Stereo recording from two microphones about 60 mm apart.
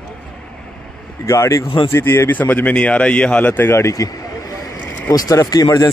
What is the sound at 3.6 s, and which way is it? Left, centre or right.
Speech, left.